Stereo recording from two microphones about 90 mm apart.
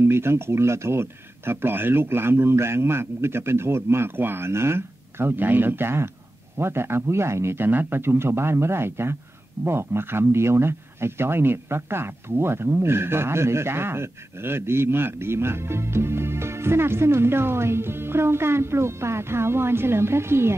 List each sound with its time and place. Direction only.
0.0 s speech: 30° right (ahead or behind)